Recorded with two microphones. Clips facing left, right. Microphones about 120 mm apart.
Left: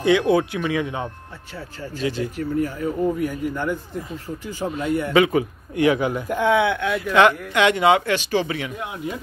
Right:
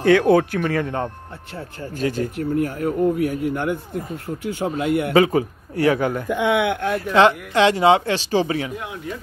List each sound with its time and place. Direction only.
0.1 s speech: 50° right (ahead or behind)
5.1 s speech: 35° right (ahead or behind)
6.2 s speech: 70° right (ahead or behind); by 7.0 s 45° right (ahead or behind)
7.1 s speech: 30° right (ahead or behind)